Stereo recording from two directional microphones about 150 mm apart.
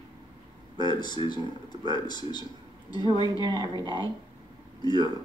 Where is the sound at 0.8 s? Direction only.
30° left (ahead or behind).